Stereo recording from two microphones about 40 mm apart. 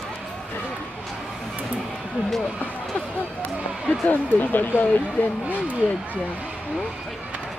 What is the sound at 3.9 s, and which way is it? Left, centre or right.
Speech, left.